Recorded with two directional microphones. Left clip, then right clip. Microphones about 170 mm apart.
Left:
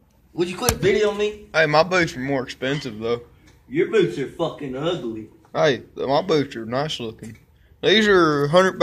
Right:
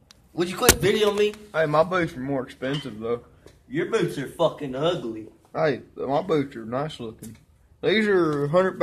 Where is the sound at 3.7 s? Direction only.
15° right (ahead or behind).